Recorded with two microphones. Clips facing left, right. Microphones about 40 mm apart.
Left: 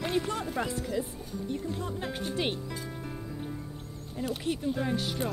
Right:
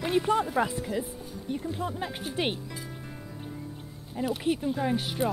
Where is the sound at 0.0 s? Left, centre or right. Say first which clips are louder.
Right 5 dB; centre.